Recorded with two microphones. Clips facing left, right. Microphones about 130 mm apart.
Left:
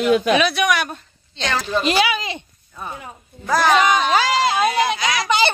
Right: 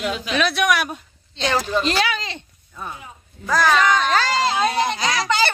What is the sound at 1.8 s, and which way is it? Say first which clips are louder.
Speech: left 3 dB; 10° left (ahead or behind).